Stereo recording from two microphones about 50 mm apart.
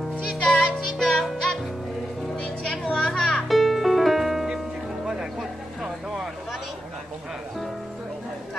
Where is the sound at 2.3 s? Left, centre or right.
Left.